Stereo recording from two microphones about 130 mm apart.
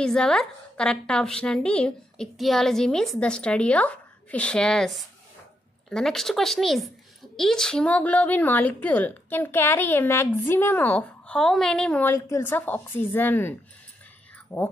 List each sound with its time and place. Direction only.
0.0 s a woman's voice: 5° left (ahead or behind)
12.1 s a woman's voice: 20° left (ahead or behind)